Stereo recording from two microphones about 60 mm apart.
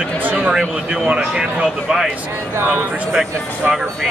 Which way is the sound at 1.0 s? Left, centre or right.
Centre.